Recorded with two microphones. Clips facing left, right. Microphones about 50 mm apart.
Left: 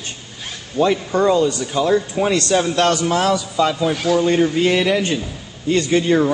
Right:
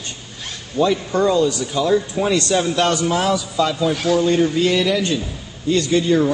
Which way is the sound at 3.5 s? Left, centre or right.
Centre.